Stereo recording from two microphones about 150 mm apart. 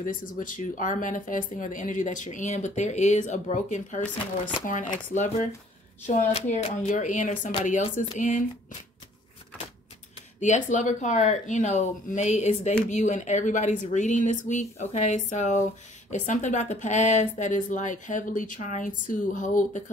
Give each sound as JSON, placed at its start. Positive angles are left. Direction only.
{"t": 0.0, "sound": "speech", "side_deg": 60}
{"t": 10.4, "sound": "speech", "side_deg": 55}